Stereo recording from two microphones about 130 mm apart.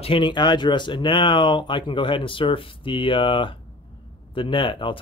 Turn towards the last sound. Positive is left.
turn(degrees=40)  # may be behind; listen again after turning